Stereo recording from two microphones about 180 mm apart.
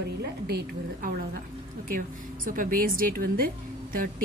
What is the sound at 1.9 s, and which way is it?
A woman's voice, 50° right (ahead or behind).